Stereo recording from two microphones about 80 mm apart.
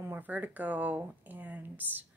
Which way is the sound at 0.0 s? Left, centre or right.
Right.